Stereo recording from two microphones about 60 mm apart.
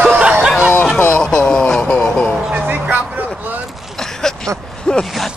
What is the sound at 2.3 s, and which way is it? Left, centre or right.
Vehicle, centre.